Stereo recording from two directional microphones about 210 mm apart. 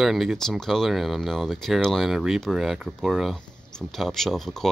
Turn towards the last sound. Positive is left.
turn(degrees=0)  # may be behind; listen again after turning